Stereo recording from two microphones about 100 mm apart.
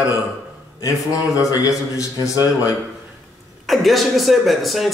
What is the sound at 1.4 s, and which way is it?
A man's voice, 35° left (ahead or behind).